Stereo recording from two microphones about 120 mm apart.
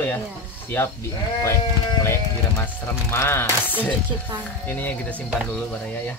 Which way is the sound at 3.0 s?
20° left (ahead or behind).